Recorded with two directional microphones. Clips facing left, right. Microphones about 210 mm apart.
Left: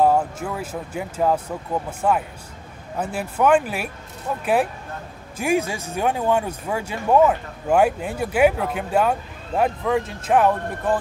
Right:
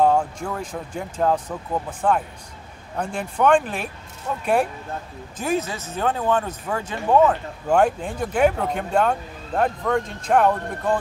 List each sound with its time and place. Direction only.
0.0 s speech: 5° left (ahead or behind)